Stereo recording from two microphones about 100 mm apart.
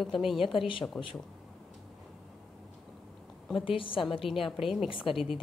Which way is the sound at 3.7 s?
60° left (ahead or behind).